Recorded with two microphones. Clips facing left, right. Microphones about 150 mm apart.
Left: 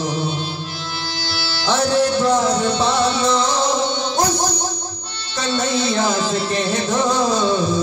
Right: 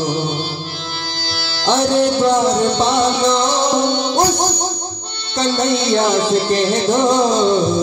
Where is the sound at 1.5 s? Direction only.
30° right (ahead or behind).